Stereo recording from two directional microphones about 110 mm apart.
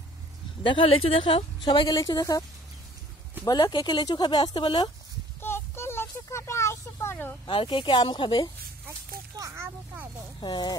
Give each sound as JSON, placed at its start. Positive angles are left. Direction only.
{"t": 0.7, "sound": "a woman's voice", "side_deg": 55}
{"t": 3.4, "sound": "a woman's voice", "side_deg": 40}
{"t": 5.4, "sound": "a sound", "side_deg": 20}
{"t": 7.4, "sound": "a woman's voice", "side_deg": 50}
{"t": 9.4, "sound": "speech", "side_deg": -25}
{"t": 10.4, "sound": "speech", "side_deg": 40}